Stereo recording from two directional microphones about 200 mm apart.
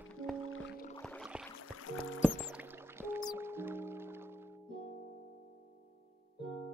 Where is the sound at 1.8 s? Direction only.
85° left.